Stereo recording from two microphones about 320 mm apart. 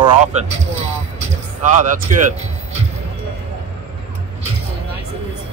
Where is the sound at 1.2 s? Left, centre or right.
Right.